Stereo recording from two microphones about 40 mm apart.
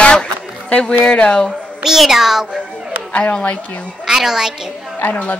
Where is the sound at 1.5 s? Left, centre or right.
Centre.